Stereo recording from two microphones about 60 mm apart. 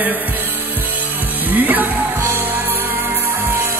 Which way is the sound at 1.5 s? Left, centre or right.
Right.